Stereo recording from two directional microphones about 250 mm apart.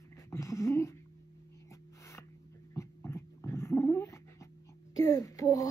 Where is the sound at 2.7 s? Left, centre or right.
Centre.